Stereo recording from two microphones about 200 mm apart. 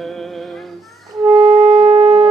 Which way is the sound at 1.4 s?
30° right (ahead or behind).